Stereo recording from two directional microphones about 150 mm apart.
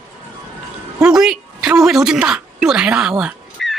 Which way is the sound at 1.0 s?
5° right (ahead or behind).